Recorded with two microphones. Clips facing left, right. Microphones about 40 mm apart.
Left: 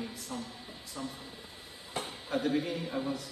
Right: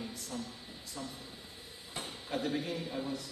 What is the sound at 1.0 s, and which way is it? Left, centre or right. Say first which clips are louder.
Speech: left 3 dB; centre.